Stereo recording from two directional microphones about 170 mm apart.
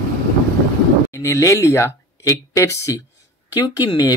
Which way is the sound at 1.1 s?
20° left (ahead or behind).